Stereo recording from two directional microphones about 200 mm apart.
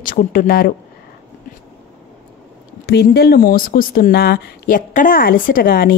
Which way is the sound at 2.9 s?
55° left (ahead or behind).